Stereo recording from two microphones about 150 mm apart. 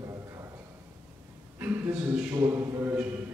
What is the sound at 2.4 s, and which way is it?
Speech, 20° right (ahead or behind).